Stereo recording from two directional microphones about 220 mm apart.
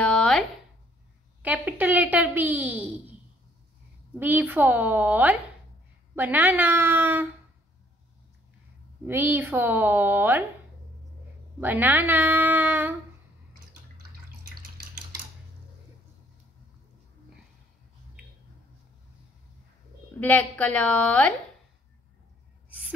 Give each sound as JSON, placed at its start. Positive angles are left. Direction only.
{"t": 0.0, "sound": "a sound", "side_deg": 5}
{"t": 1.4, "sound": "a child's voice", "side_deg": -5}
{"t": 4.2, "sound": "a child's voice", "side_deg": -10}
{"t": 9.0, "sound": "a child's voice", "side_deg": -10}
{"t": 11.6, "sound": "a child's voice", "side_deg": -10}
{"t": 20.2, "sound": "a woman's voice", "side_deg": 5}